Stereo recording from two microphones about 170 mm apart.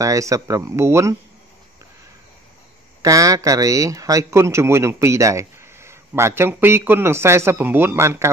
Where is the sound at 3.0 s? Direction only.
20° right (ahead or behind).